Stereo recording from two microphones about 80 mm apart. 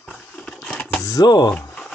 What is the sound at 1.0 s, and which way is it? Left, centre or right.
Speech, left.